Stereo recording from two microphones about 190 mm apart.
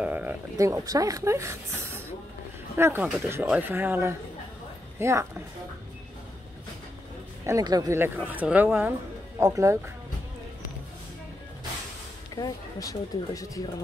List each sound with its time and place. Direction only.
0.0 s a woman's voice: 10° right (ahead or behind)
7.4 s a woman's voice: 20° right (ahead or behind)
12.4 s speech: 20° left (ahead or behind)